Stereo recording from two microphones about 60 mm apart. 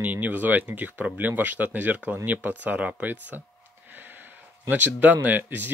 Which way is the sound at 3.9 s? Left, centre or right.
Right.